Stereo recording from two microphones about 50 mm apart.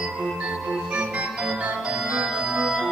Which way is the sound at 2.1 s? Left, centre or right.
Centre.